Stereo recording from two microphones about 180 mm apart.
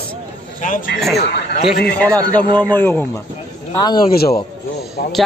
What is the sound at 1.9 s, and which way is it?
Speech, 10° left (ahead or behind).